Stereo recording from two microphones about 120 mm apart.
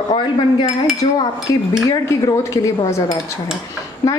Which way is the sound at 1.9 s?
25° left (ahead or behind).